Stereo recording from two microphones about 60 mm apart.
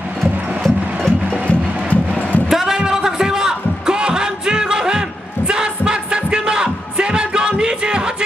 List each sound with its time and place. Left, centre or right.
0.2 s music: centre
1.5 s music: left
2.5 s music: centre